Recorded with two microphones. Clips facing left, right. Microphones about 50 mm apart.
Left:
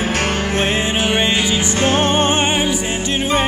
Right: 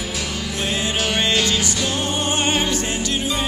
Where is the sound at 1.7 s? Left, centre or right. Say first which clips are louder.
Left 7 dB; left.